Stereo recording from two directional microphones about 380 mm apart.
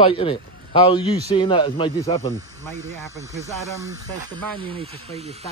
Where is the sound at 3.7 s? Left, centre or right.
Centre.